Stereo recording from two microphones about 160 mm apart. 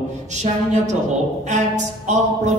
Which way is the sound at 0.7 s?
45° right (ahead or behind).